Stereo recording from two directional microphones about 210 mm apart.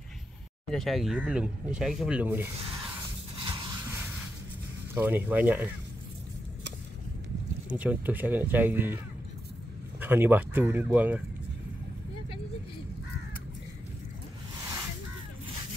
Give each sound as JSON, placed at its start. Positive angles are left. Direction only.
{"t": 0.7, "sound": "speech", "side_deg": 0}
{"t": 3.3, "sound": "a sound", "side_deg": -20}
{"t": 4.9, "sound": "speech", "side_deg": -10}
{"t": 7.7, "sound": "speech", "side_deg": -10}